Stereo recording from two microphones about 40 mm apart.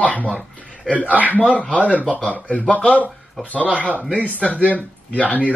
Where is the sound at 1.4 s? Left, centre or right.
Left.